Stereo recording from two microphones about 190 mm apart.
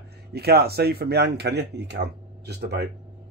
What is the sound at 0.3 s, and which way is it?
Speech, 55° right (ahead or behind).